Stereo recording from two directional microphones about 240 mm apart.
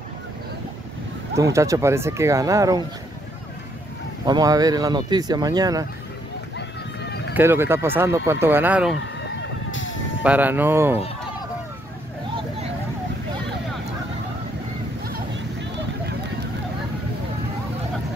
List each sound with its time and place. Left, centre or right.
1.3 s speech: centre
4.3 s speech: centre
7.3 s speech: centre
8.9 s a sound: left
10.2 s speech: centre